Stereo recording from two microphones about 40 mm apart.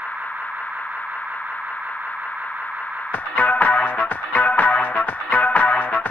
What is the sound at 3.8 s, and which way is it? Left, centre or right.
Music, left.